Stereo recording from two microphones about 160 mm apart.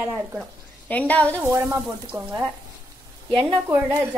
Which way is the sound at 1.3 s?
20° right (ahead or behind).